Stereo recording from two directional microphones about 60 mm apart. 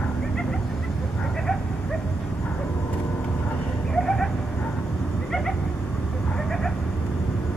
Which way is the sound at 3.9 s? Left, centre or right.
Centre.